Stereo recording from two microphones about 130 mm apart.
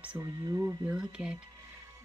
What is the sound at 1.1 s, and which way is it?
Speech, 5° right (ahead or behind).